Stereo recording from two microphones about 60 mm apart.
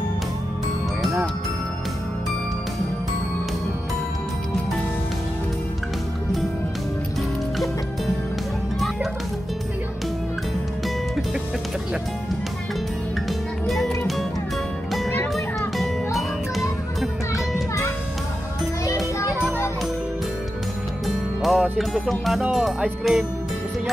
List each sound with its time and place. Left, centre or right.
7.2 s music: centre
8.7 s music: centre
13.7 s music: centre
15.8 s music: centre
18.9 s children playing: left
21.4 s music: centre
22.0 s speech: centre